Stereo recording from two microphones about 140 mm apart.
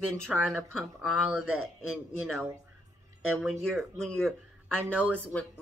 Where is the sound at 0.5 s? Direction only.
Centre (ahead or behind).